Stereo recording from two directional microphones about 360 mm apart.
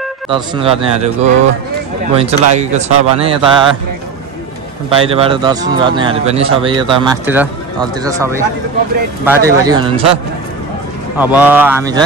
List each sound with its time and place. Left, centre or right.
0.3 s speech: centre
4.8 s speech: centre
9.2 s speech: centre
11.1 s speech: centre